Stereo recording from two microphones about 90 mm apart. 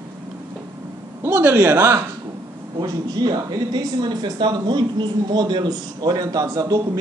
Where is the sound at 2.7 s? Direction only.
50° right (ahead or behind).